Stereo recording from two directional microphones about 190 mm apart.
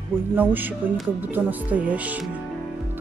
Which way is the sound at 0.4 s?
10° right (ahead or behind).